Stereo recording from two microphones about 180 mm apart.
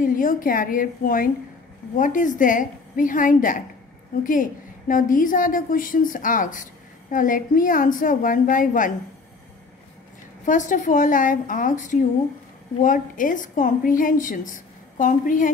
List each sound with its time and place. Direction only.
0.0 s a woman's voice: 50° left (ahead or behind)
10.4 s a woman's voice: 45° left (ahead or behind)